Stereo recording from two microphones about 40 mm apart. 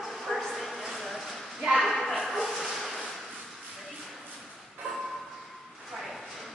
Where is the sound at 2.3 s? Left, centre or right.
Centre.